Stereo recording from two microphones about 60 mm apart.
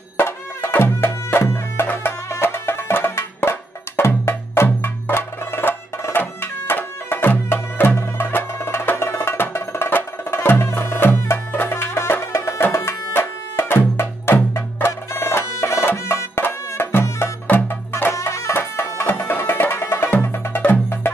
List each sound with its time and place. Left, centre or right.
0.2 s music: left
18.1 s music: left
18.5 s music: left
20.1 s music: left